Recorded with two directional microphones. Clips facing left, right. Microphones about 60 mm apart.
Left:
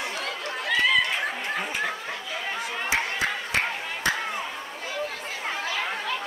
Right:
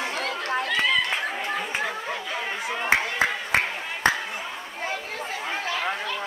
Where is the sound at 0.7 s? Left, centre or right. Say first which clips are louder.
Left 4 dB; centre.